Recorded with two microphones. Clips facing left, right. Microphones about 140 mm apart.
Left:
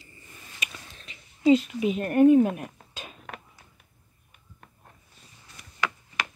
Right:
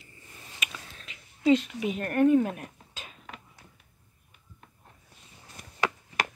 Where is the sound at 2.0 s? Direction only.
10° left (ahead or behind).